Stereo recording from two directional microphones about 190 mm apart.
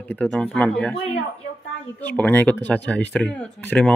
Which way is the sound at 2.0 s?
10° left (ahead or behind).